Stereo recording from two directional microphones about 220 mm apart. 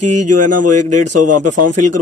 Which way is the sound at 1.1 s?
90° right.